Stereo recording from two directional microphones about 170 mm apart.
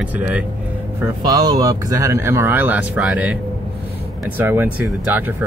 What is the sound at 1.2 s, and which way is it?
Speech, 20° right (ahead or behind).